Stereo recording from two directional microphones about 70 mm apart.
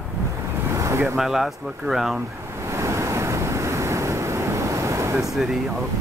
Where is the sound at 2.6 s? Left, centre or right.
Right.